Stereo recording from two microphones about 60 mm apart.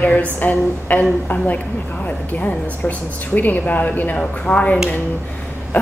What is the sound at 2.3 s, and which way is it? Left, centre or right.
A woman's voice, left.